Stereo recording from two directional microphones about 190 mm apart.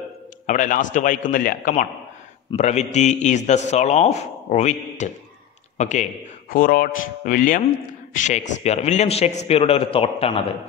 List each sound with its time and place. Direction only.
0.5 s a man's voice: 40° left (ahead or behind)
6.5 s a man's voice: 50° left (ahead or behind); by 10.4 s 30° left (ahead or behind)